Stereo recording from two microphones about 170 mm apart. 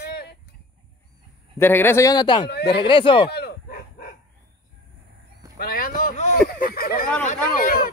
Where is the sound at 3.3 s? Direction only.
65° left (ahead or behind).